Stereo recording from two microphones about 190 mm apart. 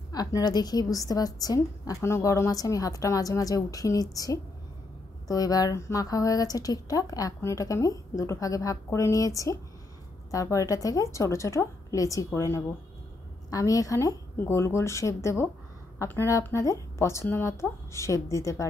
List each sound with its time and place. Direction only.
0.1 s speech: 20° left (ahead or behind)